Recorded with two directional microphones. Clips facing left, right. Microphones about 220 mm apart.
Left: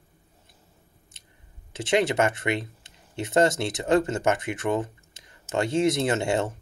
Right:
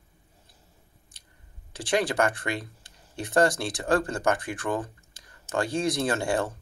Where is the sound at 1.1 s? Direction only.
25° left (ahead or behind).